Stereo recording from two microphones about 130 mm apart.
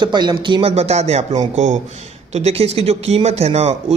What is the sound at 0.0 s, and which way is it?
Speech, 35° right (ahead or behind).